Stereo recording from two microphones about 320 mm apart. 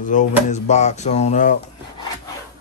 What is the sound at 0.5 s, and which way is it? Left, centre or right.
Speech, left.